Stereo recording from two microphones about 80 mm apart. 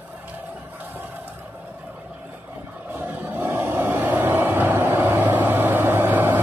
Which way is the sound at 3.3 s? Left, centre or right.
Right.